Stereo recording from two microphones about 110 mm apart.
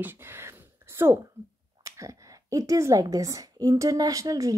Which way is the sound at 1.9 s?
30° right (ahead or behind).